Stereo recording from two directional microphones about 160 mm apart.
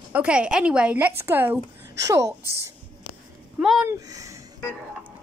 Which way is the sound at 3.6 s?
5° right (ahead or behind).